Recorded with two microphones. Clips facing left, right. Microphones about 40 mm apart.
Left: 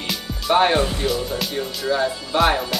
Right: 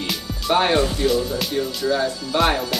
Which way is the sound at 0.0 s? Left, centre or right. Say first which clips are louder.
Right 1 dB; centre.